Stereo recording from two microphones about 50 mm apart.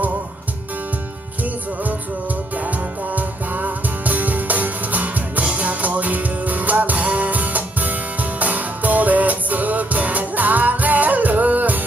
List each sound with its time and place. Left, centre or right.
2.6 s music: right